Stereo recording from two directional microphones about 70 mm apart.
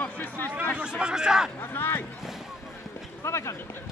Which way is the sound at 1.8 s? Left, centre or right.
Left.